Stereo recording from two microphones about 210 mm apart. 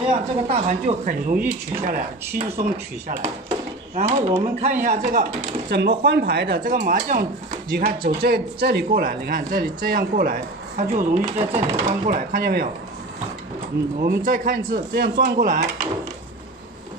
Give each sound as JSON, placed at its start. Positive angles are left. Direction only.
{"t": 0.5, "sound": "speech", "side_deg": -35}
{"t": 5.7, "sound": "speech", "side_deg": -50}
{"t": 14.0, "sound": "speech", "side_deg": -40}